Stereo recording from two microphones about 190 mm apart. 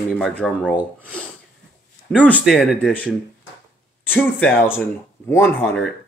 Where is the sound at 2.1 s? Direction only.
5° left (ahead or behind).